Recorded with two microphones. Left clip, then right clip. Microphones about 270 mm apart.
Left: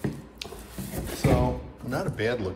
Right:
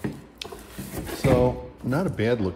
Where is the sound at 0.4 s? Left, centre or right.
Right.